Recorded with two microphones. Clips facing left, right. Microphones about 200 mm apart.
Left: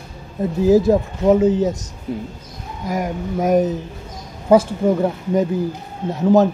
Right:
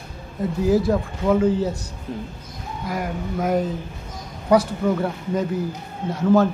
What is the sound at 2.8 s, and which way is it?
Speech, 20° left (ahead or behind).